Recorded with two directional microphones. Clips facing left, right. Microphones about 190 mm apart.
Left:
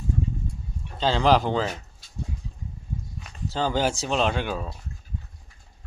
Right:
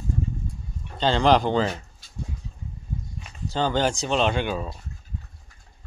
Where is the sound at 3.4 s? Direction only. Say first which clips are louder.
Right 1 dB; 5° left (ahead or behind).